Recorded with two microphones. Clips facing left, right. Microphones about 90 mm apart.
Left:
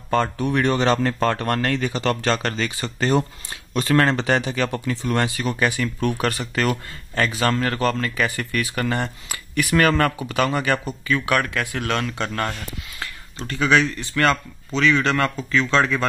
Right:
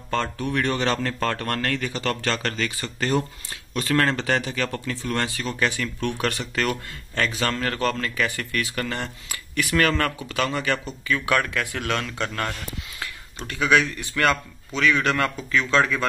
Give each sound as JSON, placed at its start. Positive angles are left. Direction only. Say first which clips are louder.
{"t": 0.1, "sound": "a man's voice", "louder": "left 5 dB", "side_deg": 15}
{"t": 11.9, "sound": "speech", "louder": "left 3 dB", "side_deg": 5}